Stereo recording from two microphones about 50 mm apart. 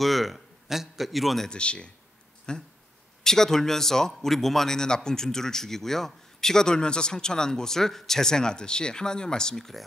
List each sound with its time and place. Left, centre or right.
0.0 s speech: centre
1.5 s speech: left